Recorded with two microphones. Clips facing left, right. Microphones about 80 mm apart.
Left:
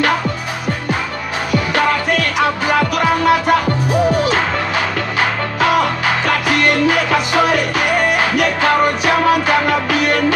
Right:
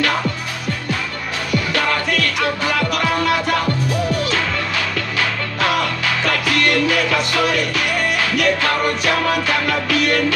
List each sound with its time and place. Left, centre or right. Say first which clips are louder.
2.4 s music: left 4 dB; left